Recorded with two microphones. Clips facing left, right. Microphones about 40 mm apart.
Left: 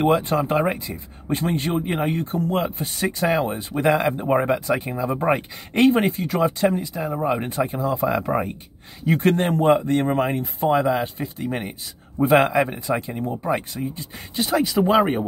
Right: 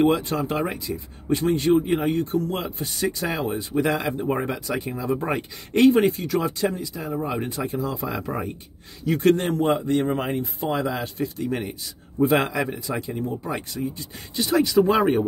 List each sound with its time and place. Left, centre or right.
0.0 s speech: left
14.4 s speech: centre